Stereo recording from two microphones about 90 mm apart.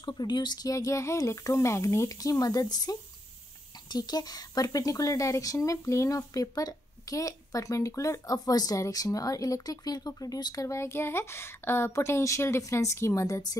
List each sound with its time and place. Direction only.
0.0 s speech: 50° left (ahead or behind)